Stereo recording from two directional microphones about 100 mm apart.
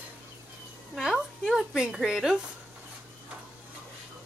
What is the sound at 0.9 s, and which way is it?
A woman's voice, centre (ahead or behind).